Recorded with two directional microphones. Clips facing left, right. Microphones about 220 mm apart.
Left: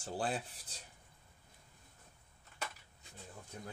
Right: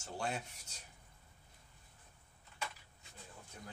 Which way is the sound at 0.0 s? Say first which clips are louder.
Left 3 dB; 35° left (ahead or behind).